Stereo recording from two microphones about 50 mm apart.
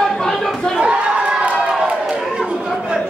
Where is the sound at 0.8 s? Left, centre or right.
Right.